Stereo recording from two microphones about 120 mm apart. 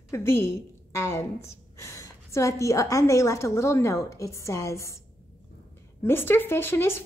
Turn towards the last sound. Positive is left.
turn(degrees=20)  # may be behind; listen again after turning